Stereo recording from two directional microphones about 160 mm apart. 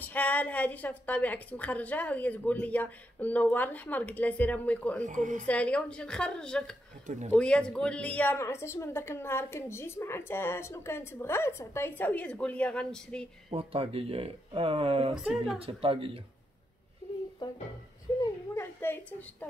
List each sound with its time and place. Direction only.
0.0 s a woman's voice: 10° left (ahead or behind)
5.0 s speech: 50° right (ahead or behind)
5.4 s a woman's voice: 10° left (ahead or behind)
13.5 s speech: 35° right (ahead or behind)
15.2 s a woman's voice: centre (ahead or behind)
15.6 s speech: 35° right (ahead or behind)
18.2 s a sound: 15° left (ahead or behind)